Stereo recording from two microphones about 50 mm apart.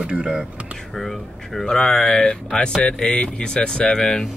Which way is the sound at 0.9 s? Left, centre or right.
Centre.